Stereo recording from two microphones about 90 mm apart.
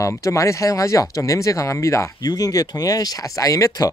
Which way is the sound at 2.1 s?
45° left (ahead or behind).